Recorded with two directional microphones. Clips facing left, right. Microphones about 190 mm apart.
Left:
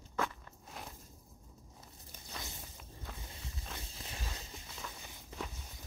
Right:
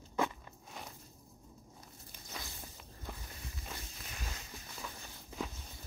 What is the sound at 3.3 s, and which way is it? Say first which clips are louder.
Walk: even; 25° left (ahead or behind).